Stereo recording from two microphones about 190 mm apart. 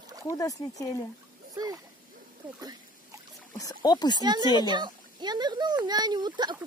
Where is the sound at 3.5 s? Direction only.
20° left (ahead or behind).